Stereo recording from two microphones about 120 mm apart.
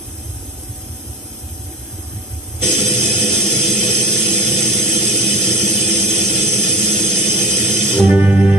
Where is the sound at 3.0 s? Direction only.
5° left (ahead or behind).